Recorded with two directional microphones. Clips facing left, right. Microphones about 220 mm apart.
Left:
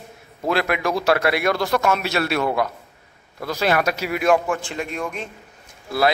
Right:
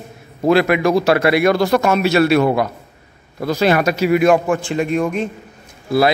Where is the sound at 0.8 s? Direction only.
25° right (ahead or behind).